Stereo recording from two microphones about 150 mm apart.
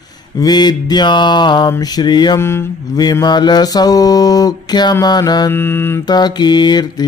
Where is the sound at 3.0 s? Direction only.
25° left (ahead or behind).